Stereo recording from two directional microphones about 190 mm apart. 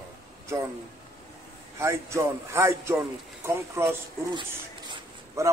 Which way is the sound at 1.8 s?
15° right (ahead or behind).